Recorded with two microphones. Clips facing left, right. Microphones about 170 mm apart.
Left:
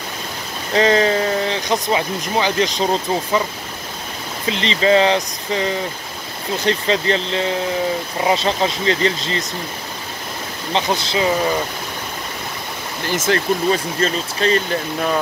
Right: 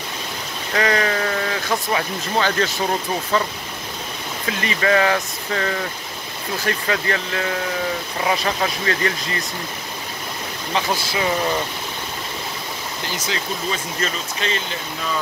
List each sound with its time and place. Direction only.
0.7 s speech: 25° left (ahead or behind)
4.5 s speech: 25° left (ahead or behind)
10.7 s speech: 25° left (ahead or behind)
13.1 s speech: 50° left (ahead or behind)
14.0 s speech: 40° left (ahead or behind)